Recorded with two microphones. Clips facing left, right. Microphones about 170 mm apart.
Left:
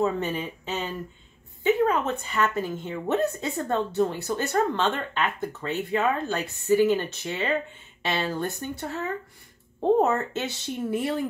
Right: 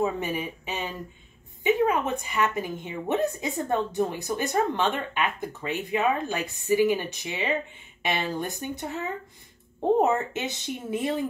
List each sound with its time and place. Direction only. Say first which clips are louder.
0.0 s a woman's voice: left 1 dB; 10° right (ahead or behind)